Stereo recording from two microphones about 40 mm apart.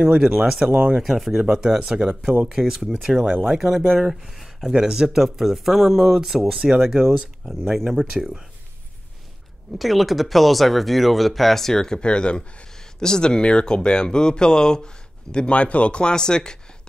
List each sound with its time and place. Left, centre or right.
0.2 s speech: centre
0.7 s speech: right
1.0 s speech: centre
1.4 s speech: right
3.3 s speech: right
3.5 s speech: centre
4.6 s speech: centre
5.2 s speech: centre
7.4 s speech: centre
8.1 s speech: centre
9.8 s speech: centre; by 12.6 s left
12.7 s speech: centre